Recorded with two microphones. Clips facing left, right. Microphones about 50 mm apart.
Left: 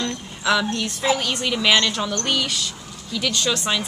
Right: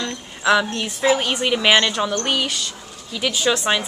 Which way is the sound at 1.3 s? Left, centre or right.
Centre.